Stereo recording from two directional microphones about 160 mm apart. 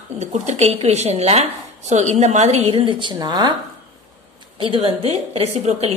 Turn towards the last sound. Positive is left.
turn(degrees=-40)  # may be behind; listen again after turning